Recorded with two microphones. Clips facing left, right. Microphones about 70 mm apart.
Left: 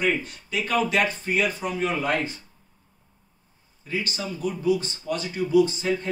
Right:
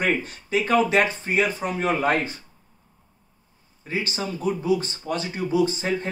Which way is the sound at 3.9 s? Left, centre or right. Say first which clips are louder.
Right 2 dB; right.